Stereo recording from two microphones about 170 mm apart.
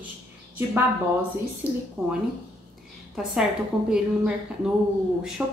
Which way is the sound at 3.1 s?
5° right (ahead or behind).